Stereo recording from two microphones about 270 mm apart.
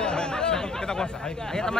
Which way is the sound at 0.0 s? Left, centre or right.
Centre.